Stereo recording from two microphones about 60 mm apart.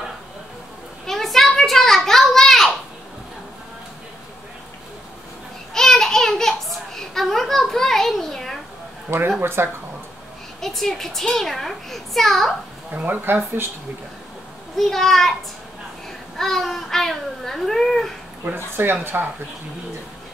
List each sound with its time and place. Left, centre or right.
1.0 s a sound: centre
5.7 s a sound: centre
9.4 s speech: right
10.6 s a child's voice: centre
12.9 s speech: right
14.8 s a child's voice: centre
16.3 s a child's voice: centre
18.4 s speech: right